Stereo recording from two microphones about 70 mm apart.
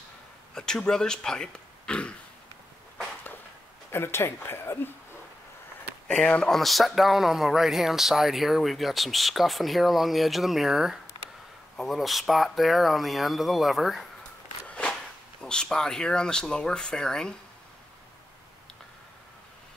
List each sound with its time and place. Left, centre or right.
0.6 s speech: centre
3.9 s speech: left
6.0 s speech: centre
6.5 s speech: centre
14.7 s a sound: centre
15.4 s speech: centre